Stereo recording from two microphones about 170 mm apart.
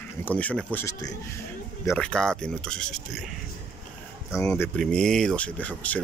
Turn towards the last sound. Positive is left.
turn(degrees=10)  # may be behind; listen again after turning